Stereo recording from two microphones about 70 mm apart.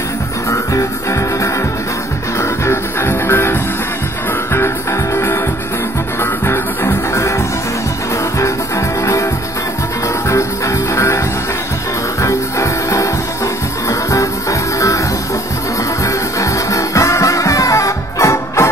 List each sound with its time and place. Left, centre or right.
2.6 s music: left
5.1 s music: left
6.4 s music: left
12.2 s music: left
16.3 s music: left